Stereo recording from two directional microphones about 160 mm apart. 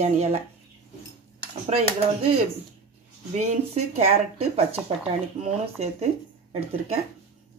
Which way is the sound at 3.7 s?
40° right (ahead or behind).